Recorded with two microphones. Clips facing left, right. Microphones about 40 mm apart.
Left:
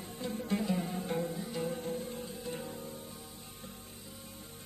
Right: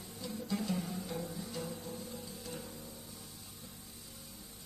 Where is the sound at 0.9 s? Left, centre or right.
Left.